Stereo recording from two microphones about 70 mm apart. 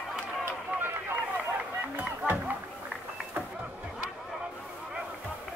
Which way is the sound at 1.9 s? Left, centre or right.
Right.